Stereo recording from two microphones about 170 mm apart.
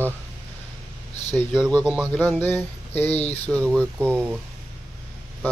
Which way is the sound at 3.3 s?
5° left (ahead or behind).